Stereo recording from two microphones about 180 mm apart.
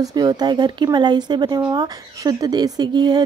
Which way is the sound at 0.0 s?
20° right (ahead or behind).